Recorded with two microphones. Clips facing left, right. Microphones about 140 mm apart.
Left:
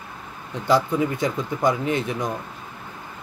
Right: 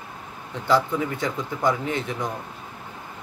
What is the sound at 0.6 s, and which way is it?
Speech, 15° left (ahead or behind).